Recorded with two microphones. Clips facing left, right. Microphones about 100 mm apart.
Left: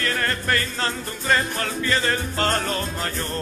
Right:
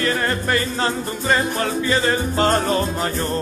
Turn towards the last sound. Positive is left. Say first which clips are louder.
# right 6 dB
turn(degrees=-15)  # may be behind; listen again after turning